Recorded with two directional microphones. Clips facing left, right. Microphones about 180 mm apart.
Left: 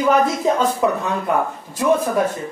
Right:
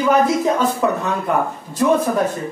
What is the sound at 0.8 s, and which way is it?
Speech, 15° left (ahead or behind).